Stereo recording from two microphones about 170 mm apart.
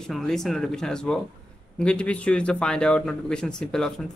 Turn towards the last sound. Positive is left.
turn(degrees=5)  # may be behind; listen again after turning